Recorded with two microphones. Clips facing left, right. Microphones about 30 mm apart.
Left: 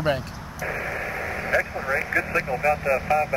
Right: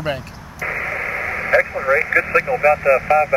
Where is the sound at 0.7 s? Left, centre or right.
Right.